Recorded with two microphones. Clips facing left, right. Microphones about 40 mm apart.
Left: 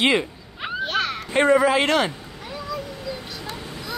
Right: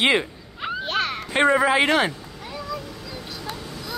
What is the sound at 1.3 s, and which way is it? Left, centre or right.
Speech, centre.